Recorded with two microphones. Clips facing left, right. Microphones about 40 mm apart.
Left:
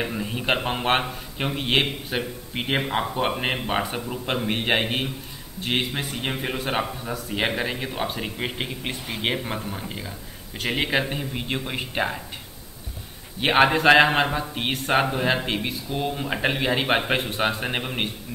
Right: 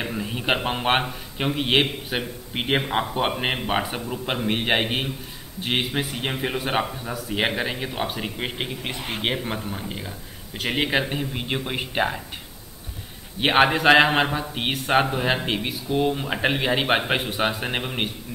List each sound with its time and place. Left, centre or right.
0.0 s speech: centre
13.4 s speech: centre